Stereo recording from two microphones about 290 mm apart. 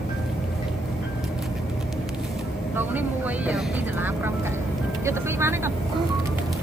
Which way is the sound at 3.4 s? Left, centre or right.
Centre.